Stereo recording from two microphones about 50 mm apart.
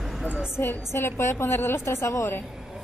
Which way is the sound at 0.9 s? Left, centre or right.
Left.